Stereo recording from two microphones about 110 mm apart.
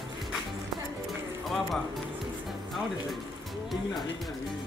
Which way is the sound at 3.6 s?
Centre (ahead or behind).